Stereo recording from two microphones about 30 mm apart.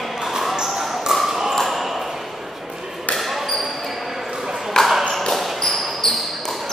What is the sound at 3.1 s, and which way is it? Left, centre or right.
Basketball bounce, centre.